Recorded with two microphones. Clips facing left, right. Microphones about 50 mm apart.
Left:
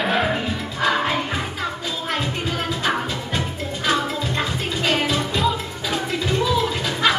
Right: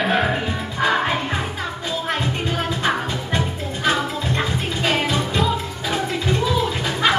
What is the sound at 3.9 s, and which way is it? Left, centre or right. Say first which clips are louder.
Music: right 1 dB; centre.